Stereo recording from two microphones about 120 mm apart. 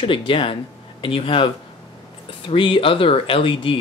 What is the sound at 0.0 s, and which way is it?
Speech, 45° left (ahead or behind).